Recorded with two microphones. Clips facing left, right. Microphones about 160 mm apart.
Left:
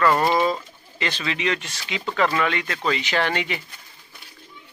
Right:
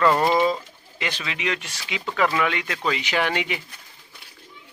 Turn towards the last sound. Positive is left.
turn(degrees=-15)  # may be behind; listen again after turning